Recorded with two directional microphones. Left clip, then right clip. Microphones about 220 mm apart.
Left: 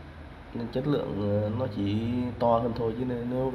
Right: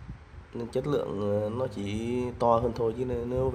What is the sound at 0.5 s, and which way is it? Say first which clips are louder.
Speech: even; 25° right (ahead or behind).